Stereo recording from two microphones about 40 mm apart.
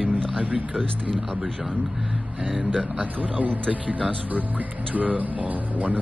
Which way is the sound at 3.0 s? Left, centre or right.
Right.